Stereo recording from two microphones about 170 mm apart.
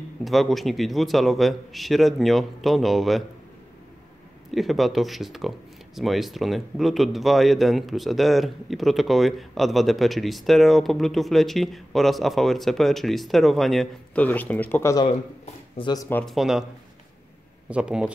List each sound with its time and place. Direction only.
0.2 s a man's voice: centre (ahead or behind)
4.5 s a man's voice: centre (ahead or behind); by 15.0 s 15° left (ahead or behind)
15.0 s speech: 35° left (ahead or behind)
15.9 s speech: 20° left (ahead or behind)
16.2 s a man's voice: centre (ahead or behind)
17.6 s a man's voice: 5° right (ahead or behind)